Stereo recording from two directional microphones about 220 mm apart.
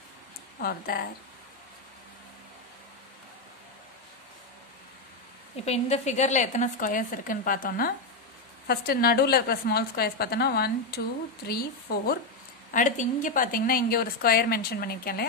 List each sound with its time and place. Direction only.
0.6 s a woman's voice: 40° left (ahead or behind)
5.7 s a woman's voice: 30° left (ahead or behind)